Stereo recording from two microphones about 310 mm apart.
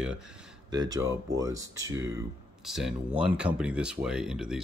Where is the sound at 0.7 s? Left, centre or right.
Centre.